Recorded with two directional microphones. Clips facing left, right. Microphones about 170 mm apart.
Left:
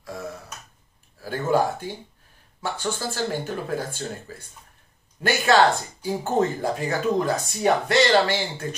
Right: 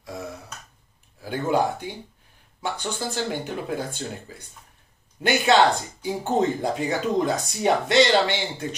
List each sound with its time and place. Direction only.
1.2 s speech: 15° right (ahead or behind)
5.2 s speech: 20° right (ahead or behind)